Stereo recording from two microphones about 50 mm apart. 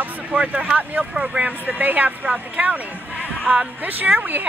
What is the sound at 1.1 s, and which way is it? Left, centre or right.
Speech, centre.